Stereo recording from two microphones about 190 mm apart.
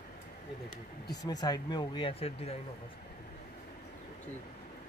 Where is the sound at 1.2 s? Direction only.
20° left (ahead or behind).